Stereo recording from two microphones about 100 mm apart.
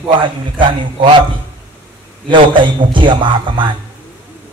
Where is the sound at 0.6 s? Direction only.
55° right (ahead or behind).